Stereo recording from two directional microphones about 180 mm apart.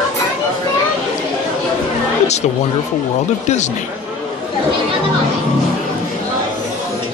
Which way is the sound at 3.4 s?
40° left (ahead or behind).